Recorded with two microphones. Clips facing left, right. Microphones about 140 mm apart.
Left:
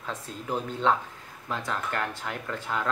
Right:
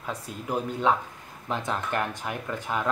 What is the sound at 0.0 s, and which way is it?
Speech, 10° right (ahead or behind).